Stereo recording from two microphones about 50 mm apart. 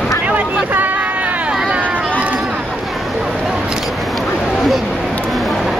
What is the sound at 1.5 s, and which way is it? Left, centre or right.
Vehicle, right.